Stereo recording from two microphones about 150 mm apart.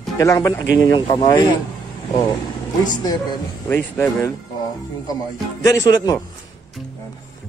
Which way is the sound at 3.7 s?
15° left (ahead or behind).